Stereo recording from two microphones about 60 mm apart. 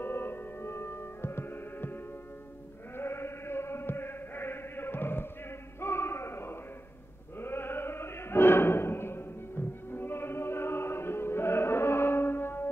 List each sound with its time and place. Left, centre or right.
0.0 s music: left
3.0 s chant: left
5.8 s a sound: left
7.3 s music: left